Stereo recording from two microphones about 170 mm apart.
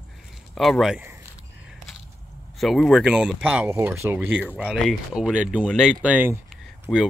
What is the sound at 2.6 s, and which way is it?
A man's voice, centre (ahead or behind).